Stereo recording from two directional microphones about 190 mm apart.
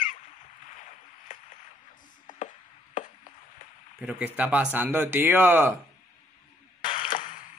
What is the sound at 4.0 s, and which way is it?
Speech, 5° right (ahead or behind).